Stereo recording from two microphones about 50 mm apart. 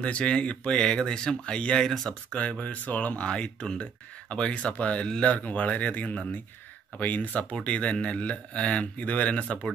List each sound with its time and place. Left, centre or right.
0.0 s speech: left; by 2.1 s centre
2.6 s speech: left
3.3 s speech: centre